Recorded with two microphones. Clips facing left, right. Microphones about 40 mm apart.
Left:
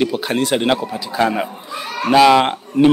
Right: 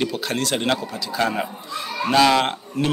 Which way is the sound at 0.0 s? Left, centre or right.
Centre.